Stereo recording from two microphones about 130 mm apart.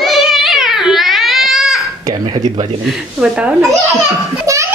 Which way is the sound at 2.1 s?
30° right (ahead or behind).